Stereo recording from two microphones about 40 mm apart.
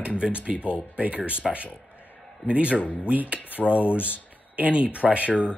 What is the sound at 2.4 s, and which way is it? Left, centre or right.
Speech, right.